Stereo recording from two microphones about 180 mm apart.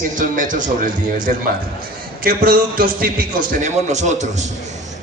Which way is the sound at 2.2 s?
55° right (ahead or behind).